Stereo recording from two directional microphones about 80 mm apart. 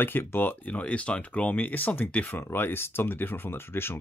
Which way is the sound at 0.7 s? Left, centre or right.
Centre.